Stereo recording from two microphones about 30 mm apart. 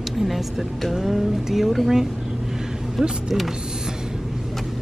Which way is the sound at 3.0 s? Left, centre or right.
Right.